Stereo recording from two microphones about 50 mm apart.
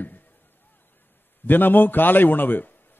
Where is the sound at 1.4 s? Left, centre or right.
Left.